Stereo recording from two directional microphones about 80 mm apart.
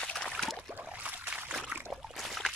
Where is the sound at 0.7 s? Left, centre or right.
Right.